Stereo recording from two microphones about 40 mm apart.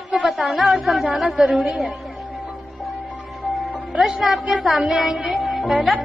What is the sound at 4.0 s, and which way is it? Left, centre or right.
A woman's voice, centre.